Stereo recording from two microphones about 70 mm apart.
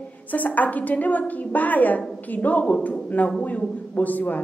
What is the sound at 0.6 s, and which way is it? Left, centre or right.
A woman's voice, left.